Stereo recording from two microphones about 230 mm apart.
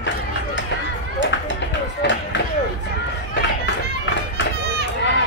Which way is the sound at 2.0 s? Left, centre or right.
Left.